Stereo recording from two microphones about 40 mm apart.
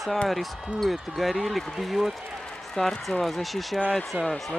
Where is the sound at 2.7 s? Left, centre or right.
Centre.